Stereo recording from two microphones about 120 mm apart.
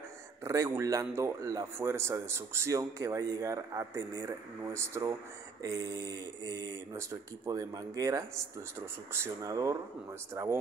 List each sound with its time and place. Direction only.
0.4 s speech: 25° right (ahead or behind)